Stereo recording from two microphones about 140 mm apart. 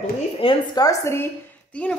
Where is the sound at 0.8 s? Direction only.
20° left (ahead or behind).